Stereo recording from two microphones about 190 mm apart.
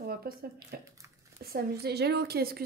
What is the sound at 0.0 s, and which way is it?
A woman's voice, 50° right (ahead or behind).